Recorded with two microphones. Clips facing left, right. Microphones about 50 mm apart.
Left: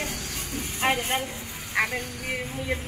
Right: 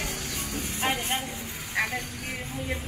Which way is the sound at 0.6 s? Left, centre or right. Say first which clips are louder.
Left 4 dB; left.